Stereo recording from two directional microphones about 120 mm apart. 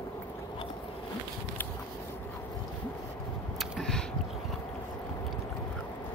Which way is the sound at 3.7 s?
5° left (ahead or behind).